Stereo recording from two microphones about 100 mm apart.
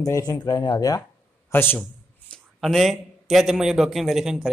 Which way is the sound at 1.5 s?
20° left (ahead or behind).